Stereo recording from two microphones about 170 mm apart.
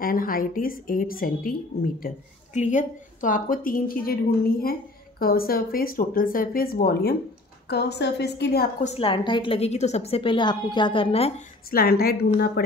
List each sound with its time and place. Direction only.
0.0 s a woman's voice: 55° left (ahead or behind)
7.6 s a woman's voice: 80° left
8.8 s a woman's voice: 35° left (ahead or behind)
11.7 s a woman's voice: 65° left (ahead or behind)